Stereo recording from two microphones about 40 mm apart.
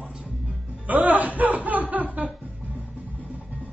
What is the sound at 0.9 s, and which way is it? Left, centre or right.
Music, right.